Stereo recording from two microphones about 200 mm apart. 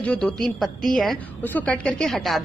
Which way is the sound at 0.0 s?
5° left (ahead or behind).